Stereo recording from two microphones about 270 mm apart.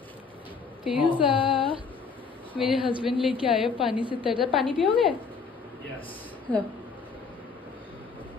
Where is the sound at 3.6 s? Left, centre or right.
Centre.